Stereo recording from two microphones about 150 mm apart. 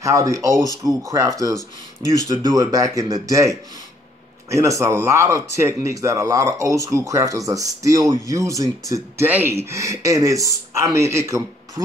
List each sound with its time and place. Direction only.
0.0 s speech: 20° right (ahead or behind)